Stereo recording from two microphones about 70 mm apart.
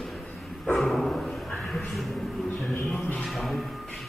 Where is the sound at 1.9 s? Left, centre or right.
Centre.